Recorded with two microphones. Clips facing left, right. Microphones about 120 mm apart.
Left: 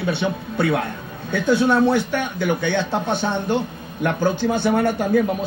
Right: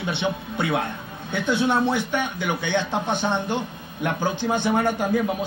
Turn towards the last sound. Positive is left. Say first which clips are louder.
# left 3 dB
turn(degrees=45)  # may be behind; listen again after turning